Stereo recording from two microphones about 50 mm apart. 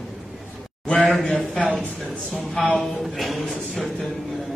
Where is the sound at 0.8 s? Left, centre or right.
Left.